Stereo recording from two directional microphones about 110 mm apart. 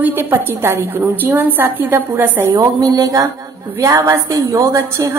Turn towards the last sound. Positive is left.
turn(degrees=-25)  # may be behind; listen again after turning